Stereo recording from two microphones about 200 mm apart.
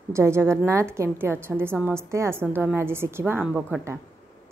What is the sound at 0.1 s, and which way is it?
A woman's voice, 15° right (ahead or behind).